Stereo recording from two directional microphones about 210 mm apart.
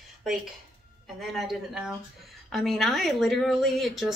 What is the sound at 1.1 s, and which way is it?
Speech, centre (ahead or behind).